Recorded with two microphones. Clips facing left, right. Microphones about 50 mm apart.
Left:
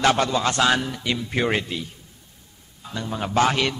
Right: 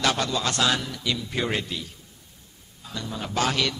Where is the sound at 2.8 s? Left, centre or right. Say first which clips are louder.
Left 5 dB; left.